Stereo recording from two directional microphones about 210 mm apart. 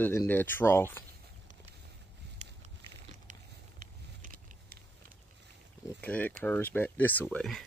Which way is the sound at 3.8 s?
40° right (ahead or behind).